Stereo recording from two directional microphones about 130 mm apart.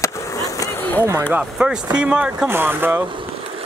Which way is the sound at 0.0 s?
25° left (ahead or behind).